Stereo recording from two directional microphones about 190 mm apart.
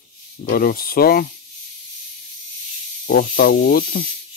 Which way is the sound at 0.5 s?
50° left (ahead or behind).